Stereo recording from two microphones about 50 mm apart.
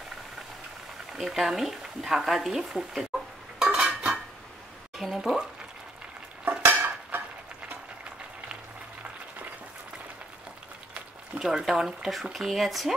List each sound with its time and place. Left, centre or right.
1.1 s speech: centre
3.6 s cutlery: right
4.9 s speech: centre
6.6 s dishes: right
11.3 s speech: centre